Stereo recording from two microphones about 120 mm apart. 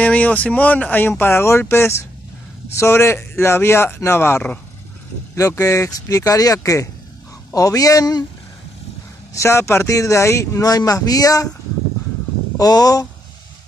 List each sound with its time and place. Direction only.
0.0 s speech: 10° left (ahead or behind); by 8.3 s 30° left (ahead or behind)
9.3 s speech: 25° left (ahead or behind)
12.5 s speech: 30° left (ahead or behind)